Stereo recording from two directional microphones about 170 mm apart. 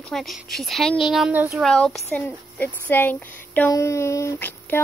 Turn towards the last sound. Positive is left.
turn(degrees=10)  # may be behind; listen again after turning